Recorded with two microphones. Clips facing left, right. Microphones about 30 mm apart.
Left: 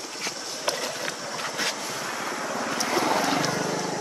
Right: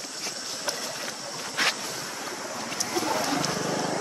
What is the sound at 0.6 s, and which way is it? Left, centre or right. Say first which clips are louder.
Skateboard: left 5 dB; left.